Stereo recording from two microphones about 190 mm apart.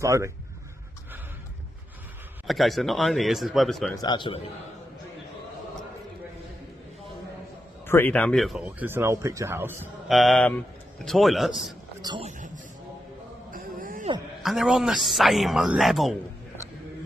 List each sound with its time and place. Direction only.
0.0 s speech: 15° right (ahead or behind)
2.4 s speech: centre (ahead or behind)
3.9 s a man's voice: 20° left (ahead or behind)
7.8 s speech: 10° left (ahead or behind); by 9.8 s 10° right (ahead or behind)
10.0 s speech: centre (ahead or behind)
12.0 s speech: 25° right (ahead or behind)
13.5 s a sound: 45° right (ahead or behind)
14.4 s speech: centre (ahead or behind)